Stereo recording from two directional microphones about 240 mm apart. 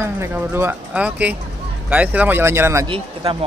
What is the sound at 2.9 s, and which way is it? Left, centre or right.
Speech, right.